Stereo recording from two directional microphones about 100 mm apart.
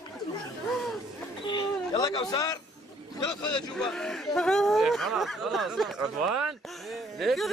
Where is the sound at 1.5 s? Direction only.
50° left (ahead or behind).